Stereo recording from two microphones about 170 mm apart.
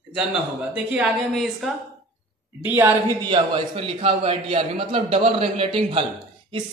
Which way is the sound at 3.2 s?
30° right (ahead or behind).